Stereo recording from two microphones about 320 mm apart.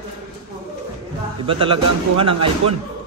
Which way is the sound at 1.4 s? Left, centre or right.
Centre.